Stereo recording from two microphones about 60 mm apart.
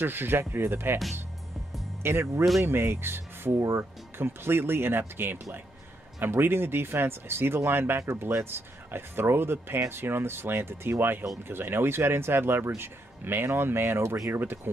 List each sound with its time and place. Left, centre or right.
0.0 s speech: right
2.0 s speech: right
3.5 s speech: right
4.2 s speech: right